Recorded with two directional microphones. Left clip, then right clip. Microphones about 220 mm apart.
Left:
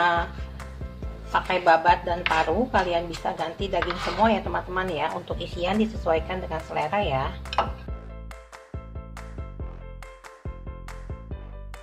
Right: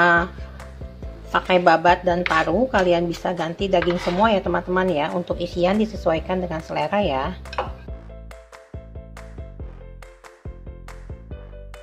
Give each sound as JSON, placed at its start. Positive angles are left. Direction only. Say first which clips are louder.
{"t": 1.3, "sound": "speech", "louder": "right 4 dB", "side_deg": -35}